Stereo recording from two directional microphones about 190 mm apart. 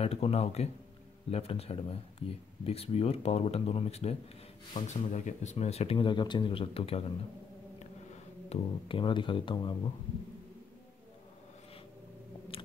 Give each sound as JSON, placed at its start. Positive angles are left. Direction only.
{"t": 0.0, "sound": "speech", "side_deg": 30}
{"t": 8.5, "sound": "speech", "side_deg": 25}